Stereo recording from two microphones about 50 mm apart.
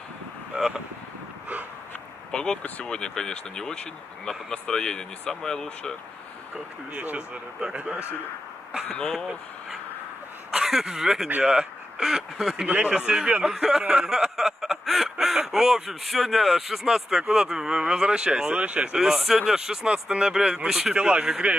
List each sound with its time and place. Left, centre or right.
2.3 s speech: centre
6.9 s a man's voice: right
7.2 s a man's voice: centre
10.6 s speech: centre
12.6 s a man's voice: right
13.1 s a sound: centre
18.6 s a man's voice: right
18.9 s a sound: centre
20.9 s a man's voice: right
21.2 s a sound: centre